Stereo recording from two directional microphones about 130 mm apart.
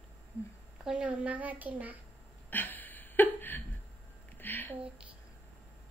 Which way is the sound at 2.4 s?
15° left (ahead or behind).